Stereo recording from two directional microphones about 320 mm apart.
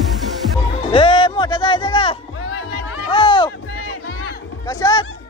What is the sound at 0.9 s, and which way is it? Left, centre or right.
Music, centre.